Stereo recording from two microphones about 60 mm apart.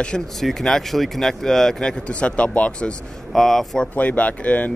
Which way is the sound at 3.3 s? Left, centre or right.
Centre.